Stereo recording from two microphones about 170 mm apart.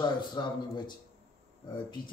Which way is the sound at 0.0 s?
25° left (ahead or behind).